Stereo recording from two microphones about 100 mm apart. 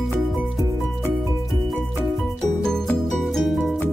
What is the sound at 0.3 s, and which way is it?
Music, centre (ahead or behind).